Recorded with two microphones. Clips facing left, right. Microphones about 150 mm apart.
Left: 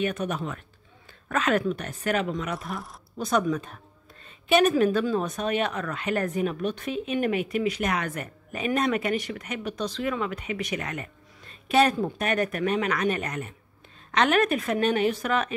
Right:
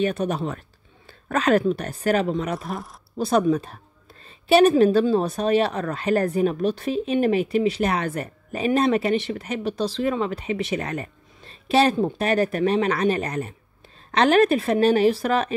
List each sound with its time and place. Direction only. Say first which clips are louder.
0.0 s a woman's voice: right 5 dB; 30° right (ahead or behind)